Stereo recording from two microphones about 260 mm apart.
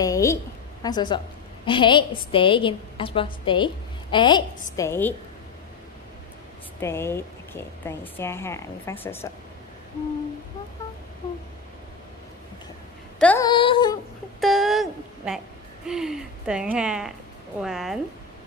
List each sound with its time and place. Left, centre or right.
0.0 s a woman's voice: centre
6.8 s speech: centre
13.2 s speech: centre
13.5 s a sound: centre
14.4 s a sound: centre
15.9 s speech: centre